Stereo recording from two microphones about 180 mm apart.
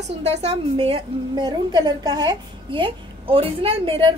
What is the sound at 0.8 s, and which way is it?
A woman's voice, 25° right (ahead or behind).